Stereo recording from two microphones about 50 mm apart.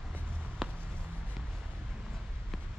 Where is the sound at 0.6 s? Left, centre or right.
Centre.